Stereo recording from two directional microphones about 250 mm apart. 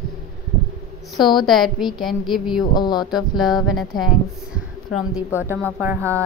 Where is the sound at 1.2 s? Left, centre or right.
Centre.